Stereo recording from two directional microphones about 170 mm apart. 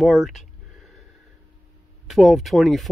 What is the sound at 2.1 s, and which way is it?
Speech, centre (ahead or behind).